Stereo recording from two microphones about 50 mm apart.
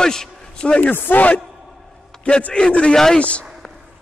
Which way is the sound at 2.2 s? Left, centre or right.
Left.